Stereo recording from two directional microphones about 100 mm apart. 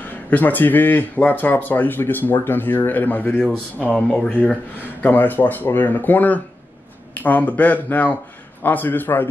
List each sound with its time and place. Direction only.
0.3 s speech: 15° left (ahead or behind)